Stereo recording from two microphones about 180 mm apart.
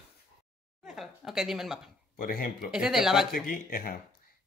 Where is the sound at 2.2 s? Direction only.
55° left (ahead or behind).